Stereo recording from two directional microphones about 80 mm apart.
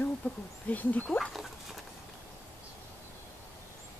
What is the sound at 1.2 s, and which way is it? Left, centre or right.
Speech, centre.